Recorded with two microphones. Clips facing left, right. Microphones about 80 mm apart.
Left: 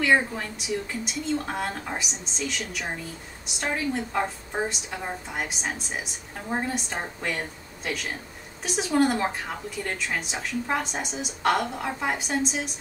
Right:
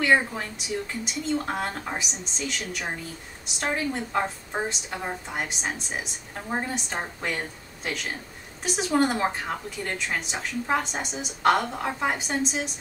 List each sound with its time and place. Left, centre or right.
0.0 s a woman's voice: centre